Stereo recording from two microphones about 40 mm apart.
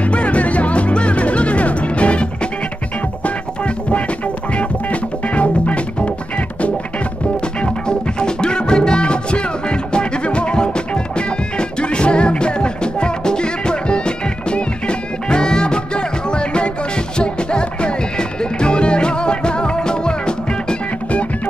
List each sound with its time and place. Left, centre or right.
0.0 s music: left
3.3 s music: left
5.3 s music: left
7.6 s music: left